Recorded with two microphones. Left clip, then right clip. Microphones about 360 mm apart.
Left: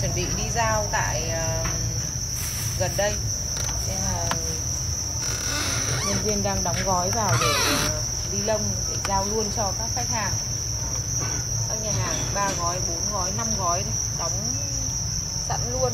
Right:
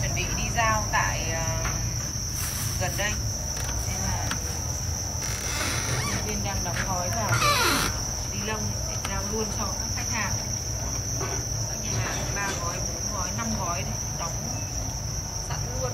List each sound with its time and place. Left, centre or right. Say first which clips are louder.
7.3 s music: right 3 dB; centre